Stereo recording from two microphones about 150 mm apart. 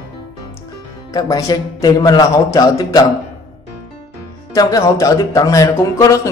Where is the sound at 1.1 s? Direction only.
25° left (ahead or behind).